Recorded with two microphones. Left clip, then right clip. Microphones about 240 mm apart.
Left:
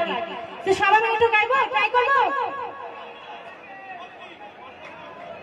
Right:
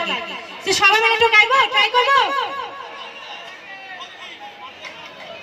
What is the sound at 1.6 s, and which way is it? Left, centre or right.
Speech, right.